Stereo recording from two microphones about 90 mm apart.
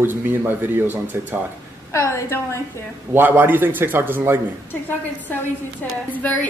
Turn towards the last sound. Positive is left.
turn(degrees=20)  # may be behind; listen again after turning